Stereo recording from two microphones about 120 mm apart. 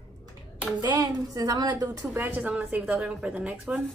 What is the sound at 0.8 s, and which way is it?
Speech, 30° right (ahead or behind).